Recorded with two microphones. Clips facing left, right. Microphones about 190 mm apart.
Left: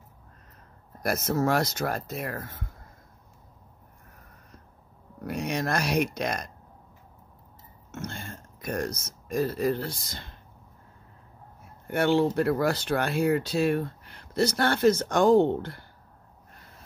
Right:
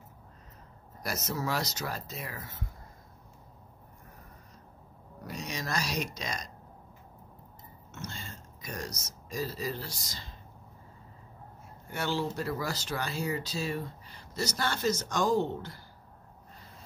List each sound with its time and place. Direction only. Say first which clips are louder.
1.0 s speech: left 8 dB; 55° left (ahead or behind)
5.2 s speech: left 9 dB; 60° left (ahead or behind)
7.9 s speech: left 6 dB; 55° left (ahead or behind)
11.9 s speech: left 10 dB; 60° left (ahead or behind)